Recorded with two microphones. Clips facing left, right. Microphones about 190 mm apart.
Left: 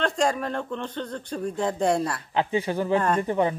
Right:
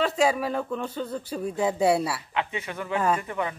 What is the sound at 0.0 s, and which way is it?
Speech, 5° right (ahead or behind).